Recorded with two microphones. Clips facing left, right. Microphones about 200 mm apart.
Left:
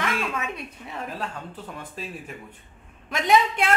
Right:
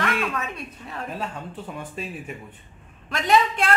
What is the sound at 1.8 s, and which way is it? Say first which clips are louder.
Speech: right 3 dB; 5° right (ahead or behind).